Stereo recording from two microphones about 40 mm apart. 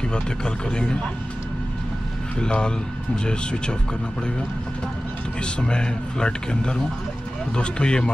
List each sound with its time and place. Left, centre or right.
0.1 s speech: left
2.3 s speech: left
5.4 s speech: left